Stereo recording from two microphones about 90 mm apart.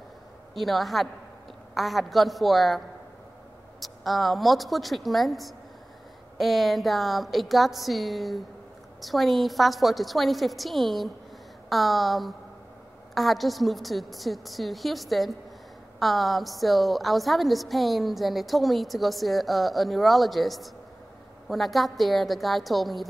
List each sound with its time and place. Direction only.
0.6 s a woman's voice: centre (ahead or behind)
3.8 s a woman's voice: centre (ahead or behind)